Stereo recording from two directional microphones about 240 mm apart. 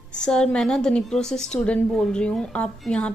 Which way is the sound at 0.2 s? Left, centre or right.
Centre.